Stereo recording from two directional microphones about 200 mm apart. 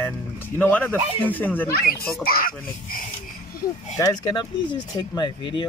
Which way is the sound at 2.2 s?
45° left (ahead or behind).